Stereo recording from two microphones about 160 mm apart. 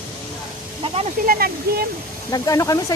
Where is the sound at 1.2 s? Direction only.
65° right (ahead or behind).